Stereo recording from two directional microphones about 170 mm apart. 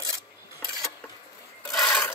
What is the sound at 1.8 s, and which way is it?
Filing, 15° left (ahead or behind).